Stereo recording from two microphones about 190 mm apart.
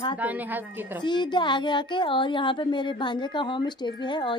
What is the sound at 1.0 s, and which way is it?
A woman's voice, 25° left (ahead or behind).